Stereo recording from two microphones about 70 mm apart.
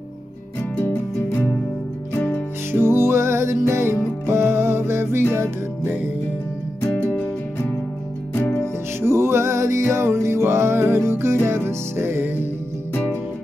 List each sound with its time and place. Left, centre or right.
0.7 s music: left
2.7 s music: right
6.8 s music: left
9.0 s music: right
12.9 s music: left